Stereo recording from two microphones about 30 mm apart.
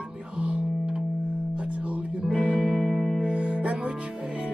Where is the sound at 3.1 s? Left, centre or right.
Right.